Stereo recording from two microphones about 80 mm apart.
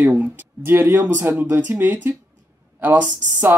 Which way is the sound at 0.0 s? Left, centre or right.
Right.